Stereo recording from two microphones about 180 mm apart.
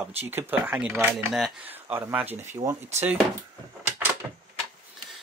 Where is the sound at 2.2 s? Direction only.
40° right (ahead or behind).